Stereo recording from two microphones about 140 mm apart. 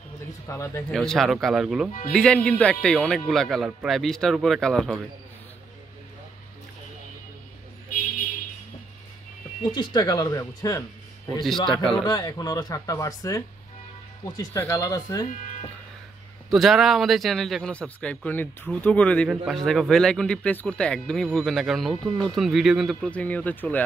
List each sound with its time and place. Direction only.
0.5 s speech: 20° left (ahead or behind)
0.9 s speech: centre (ahead or behind)
9.6 s speech: 30° left (ahead or behind)
12.0 s speech: 25° left (ahead or behind)
16.4 s a man's voice: centre (ahead or behind)
23.0 s a man's voice: 10° left (ahead or behind)